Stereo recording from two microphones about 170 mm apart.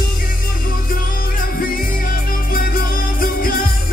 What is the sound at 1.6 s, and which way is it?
Music, 55° left (ahead or behind).